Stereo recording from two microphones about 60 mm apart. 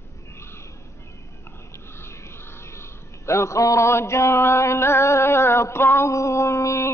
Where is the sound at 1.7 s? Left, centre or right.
Left.